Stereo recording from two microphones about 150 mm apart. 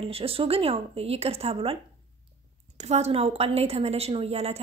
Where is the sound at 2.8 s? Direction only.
45° right (ahead or behind).